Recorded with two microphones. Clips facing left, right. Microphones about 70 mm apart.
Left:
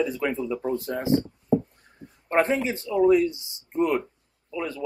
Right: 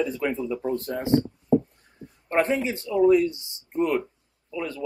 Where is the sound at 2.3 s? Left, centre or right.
Centre.